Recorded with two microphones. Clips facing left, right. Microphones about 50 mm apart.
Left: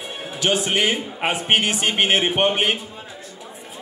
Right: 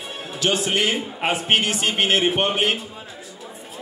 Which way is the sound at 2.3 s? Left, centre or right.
Centre.